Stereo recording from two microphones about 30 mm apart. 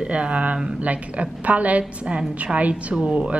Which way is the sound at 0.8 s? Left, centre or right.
Right.